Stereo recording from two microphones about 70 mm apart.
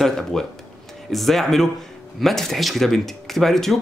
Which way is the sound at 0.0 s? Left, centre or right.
Centre.